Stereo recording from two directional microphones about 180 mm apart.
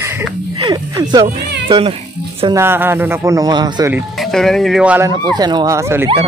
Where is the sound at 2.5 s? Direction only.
10° right (ahead or behind).